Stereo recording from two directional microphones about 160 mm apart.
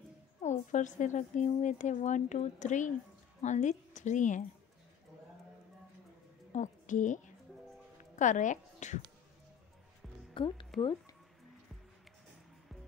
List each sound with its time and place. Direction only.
0.4 s a woman's voice: 50° left (ahead or behind)
6.5 s a woman's voice: 50° left (ahead or behind)
8.2 s a woman's voice: 50° left (ahead or behind)
10.3 s speech: 30° left (ahead or behind)